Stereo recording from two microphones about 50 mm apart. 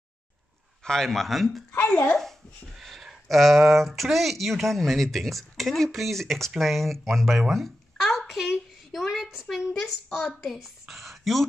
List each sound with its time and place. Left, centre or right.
0.8 s a woman's voice: centre
1.9 s speech: left
2.1 s speech: centre
8.2 s a sound: centre
9.8 s a woman's voice: centre